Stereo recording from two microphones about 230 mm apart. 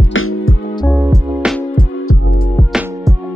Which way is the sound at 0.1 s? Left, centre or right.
Left.